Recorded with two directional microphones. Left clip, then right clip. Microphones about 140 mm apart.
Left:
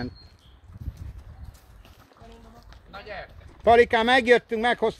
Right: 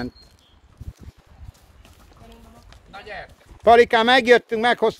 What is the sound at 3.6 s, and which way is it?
Speech, 35° right (ahead or behind).